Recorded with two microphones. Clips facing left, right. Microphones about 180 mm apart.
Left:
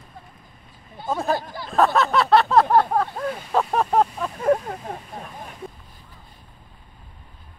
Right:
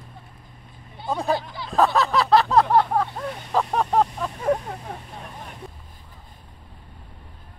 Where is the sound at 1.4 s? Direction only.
50° left (ahead or behind).